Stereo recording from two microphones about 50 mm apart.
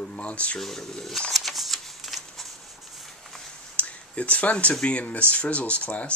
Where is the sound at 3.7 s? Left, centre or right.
Left.